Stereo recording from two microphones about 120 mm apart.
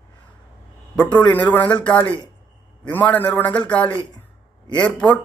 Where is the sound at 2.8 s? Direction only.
15° left (ahead or behind).